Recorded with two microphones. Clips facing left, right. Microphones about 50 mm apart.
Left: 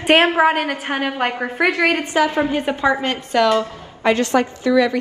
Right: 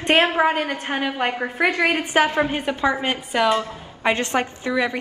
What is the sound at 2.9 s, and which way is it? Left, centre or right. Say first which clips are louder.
A woman's voice: left 3 dB; centre.